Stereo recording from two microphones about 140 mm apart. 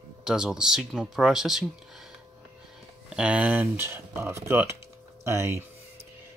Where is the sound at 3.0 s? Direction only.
5° right (ahead or behind).